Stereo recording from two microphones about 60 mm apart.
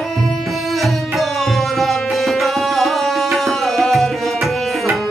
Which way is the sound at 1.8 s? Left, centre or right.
Centre.